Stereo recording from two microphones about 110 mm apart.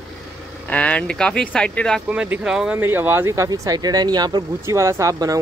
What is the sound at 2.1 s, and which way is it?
Speech, 10° right (ahead or behind).